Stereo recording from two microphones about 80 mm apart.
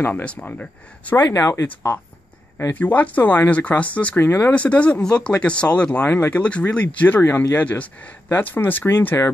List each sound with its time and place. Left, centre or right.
0.0 s speech: centre
1.1 s speech: left
2.7 s speech: centre
4.2 s speech: left
4.6 s speech: centre
7.2 s speech: left
7.5 s speech: centre